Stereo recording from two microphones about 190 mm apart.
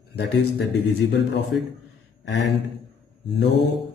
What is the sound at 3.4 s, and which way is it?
Speech, 65° left (ahead or behind).